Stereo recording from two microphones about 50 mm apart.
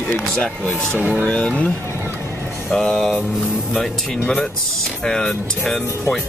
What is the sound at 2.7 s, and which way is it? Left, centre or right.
Music, centre.